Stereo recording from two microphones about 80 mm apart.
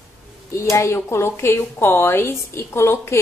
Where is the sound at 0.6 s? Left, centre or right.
Left.